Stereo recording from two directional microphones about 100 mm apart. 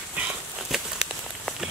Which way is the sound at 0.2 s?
5° right (ahead or behind).